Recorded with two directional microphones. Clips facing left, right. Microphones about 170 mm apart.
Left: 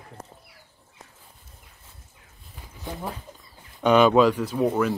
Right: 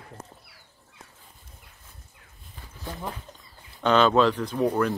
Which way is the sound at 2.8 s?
15° left (ahead or behind).